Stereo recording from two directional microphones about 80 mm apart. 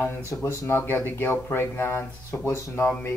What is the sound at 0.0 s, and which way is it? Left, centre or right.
Speech, left.